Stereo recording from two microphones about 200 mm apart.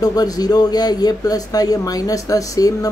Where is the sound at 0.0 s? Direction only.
20° left (ahead or behind).